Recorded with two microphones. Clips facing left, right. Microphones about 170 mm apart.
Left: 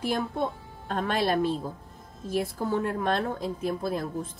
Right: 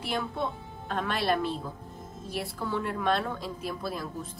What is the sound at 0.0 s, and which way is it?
A woman's voice, 45° left (ahead or behind).